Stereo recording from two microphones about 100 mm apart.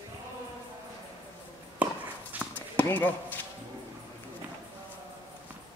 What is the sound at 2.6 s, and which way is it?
Basketball bounce, 20° left (ahead or behind).